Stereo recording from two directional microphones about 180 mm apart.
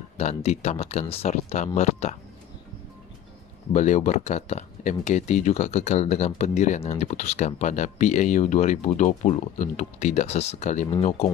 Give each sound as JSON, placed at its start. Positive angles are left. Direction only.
{"t": 0.2, "sound": "speech", "side_deg": 40}
{"t": 3.7, "sound": "speech", "side_deg": 40}